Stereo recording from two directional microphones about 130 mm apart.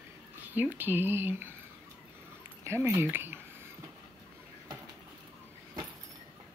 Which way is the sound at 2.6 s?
20° right (ahead or behind).